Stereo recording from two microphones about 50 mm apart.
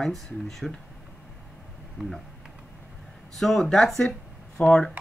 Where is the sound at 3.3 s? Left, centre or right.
Centre.